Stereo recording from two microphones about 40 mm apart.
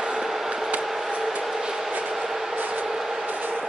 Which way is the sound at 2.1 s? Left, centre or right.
Centre.